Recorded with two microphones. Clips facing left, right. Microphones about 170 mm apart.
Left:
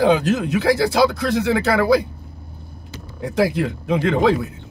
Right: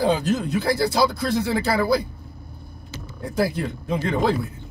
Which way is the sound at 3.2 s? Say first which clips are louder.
Left 4 dB; 75° left (ahead or behind).